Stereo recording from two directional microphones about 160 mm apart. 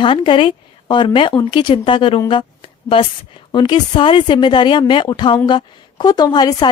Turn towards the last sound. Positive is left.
turn(degrees=25)  # may be behind; listen again after turning